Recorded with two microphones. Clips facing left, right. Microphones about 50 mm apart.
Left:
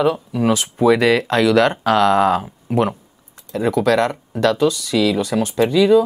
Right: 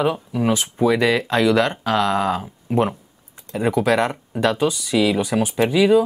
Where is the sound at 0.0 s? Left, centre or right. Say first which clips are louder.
Left 3 dB; centre.